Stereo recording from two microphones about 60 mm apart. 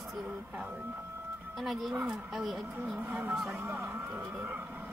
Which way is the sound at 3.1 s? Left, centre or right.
Right.